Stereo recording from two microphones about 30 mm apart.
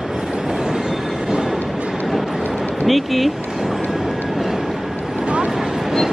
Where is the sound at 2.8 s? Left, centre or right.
Centre.